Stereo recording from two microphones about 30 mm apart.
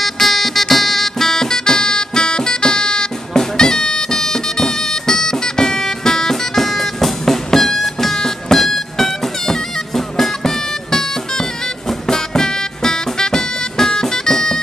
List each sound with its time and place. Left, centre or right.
0.0 s music: centre